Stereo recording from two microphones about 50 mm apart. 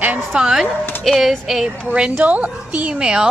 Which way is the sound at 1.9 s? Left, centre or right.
Right.